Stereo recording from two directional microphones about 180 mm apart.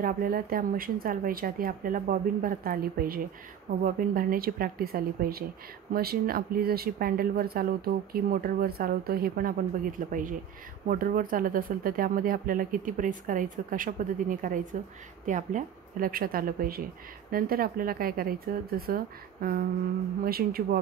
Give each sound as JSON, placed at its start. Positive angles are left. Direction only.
{"t": 0.0, "sound": "speech", "side_deg": -55}